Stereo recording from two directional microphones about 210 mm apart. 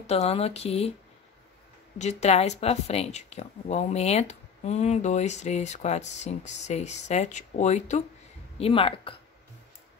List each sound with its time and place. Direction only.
0.0 s speech: 30° left (ahead or behind)
2.0 s speech: 30° left (ahead or behind)